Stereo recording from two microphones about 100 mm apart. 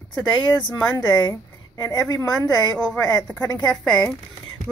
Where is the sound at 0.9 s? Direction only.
45° left (ahead or behind).